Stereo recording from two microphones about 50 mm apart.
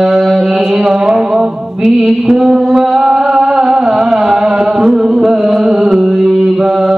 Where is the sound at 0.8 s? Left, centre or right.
Centre.